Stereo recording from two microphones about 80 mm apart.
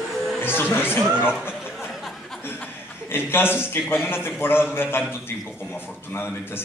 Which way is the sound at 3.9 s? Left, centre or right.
Left.